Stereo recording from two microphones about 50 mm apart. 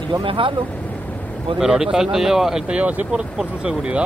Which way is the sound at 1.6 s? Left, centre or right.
Centre.